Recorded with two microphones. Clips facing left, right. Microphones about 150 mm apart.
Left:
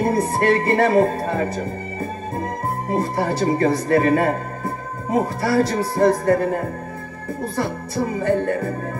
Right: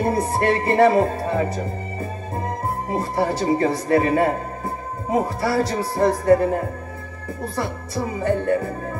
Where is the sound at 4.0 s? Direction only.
20° right (ahead or behind).